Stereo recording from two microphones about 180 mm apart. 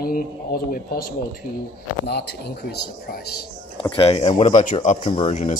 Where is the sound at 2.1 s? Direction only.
65° left (ahead or behind).